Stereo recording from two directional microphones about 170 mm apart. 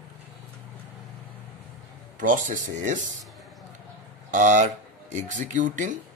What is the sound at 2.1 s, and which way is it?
Speech, 50° right (ahead or behind).